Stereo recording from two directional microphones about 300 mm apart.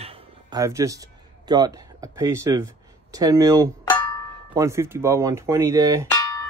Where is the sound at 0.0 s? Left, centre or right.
Centre.